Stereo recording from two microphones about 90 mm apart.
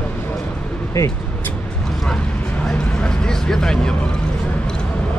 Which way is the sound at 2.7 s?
10° left (ahead or behind).